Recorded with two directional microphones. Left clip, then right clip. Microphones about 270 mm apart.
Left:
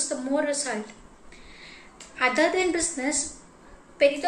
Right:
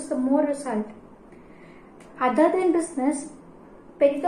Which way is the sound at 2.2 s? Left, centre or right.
Centre.